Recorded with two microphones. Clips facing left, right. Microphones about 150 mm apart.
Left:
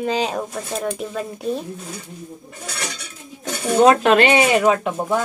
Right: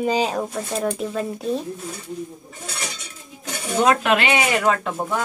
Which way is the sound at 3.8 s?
35° left (ahead or behind).